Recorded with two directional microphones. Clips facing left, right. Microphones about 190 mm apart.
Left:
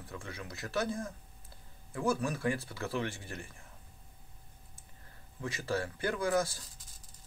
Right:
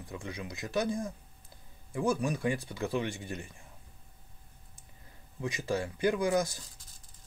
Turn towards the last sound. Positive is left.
turn(degrees=-15)  # may be behind; listen again after turning